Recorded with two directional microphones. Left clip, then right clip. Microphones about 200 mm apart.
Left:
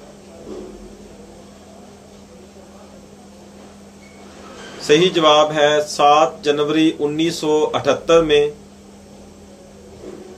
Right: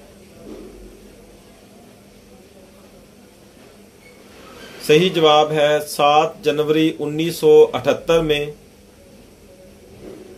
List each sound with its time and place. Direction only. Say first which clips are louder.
4.8 s speech: left 1 dB; 40° right (ahead or behind)